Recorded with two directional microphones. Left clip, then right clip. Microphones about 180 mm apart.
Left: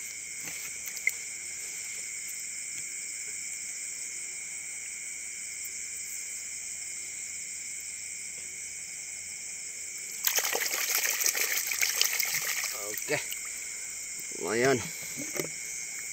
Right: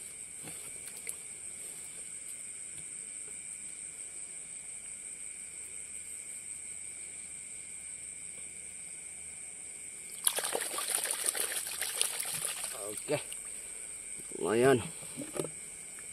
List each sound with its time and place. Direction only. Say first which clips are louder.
10.2 s trickle: left 6 dB; centre (ahead or behind)
12.8 s trickle: right 1 dB; 30° right (ahead or behind)
14.4 s speech: even; 30° right (ahead or behind)
15.1 s a sound: left 3 dB; 5° right (ahead or behind)